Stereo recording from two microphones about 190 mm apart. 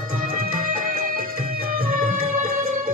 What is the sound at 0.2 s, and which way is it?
Music, 50° right (ahead or behind).